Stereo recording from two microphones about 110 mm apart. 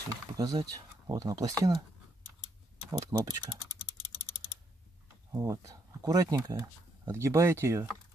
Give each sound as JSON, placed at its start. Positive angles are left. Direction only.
{"t": 0.4, "sound": "speech", "side_deg": -35}
{"t": 2.9, "sound": "speech", "side_deg": -35}
{"t": 5.3, "sound": "speech", "side_deg": -30}